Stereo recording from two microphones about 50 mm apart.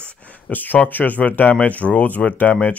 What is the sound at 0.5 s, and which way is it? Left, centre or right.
Speech, left.